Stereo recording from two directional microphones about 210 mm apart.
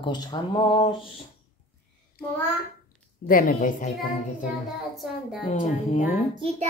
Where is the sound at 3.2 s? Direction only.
40° left (ahead or behind).